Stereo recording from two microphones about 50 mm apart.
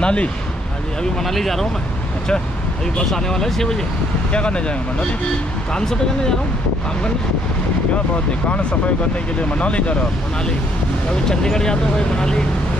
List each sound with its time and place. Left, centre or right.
0.0 s speech: left
1.2 s speech: centre
3.1 s speech: centre
4.3 s speech: left
5.8 s speech: centre
9.6 s speech: left
11.1 s speech: centre